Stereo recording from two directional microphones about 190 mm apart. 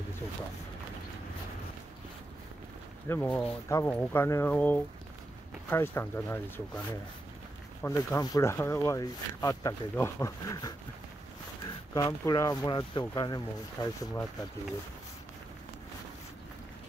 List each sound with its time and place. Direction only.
3.1 s speech: 10° left (ahead or behind)
7.8 s speech: 15° left (ahead or behind)